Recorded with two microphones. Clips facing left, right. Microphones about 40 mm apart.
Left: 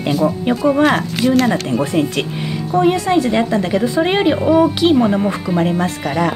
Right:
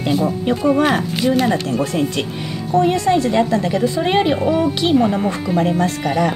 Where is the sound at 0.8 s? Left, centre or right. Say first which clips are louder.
Left 2 dB; centre; by 4.0 s left.